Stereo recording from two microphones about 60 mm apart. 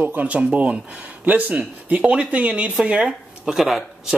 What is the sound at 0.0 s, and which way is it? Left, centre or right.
Speech, right.